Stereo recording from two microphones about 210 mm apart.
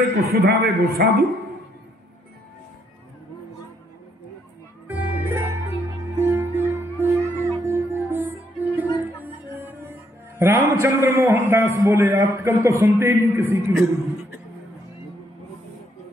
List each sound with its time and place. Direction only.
0.1 s a man's voice: 50° right (ahead or behind)
4.8 s music: 10° right (ahead or behind)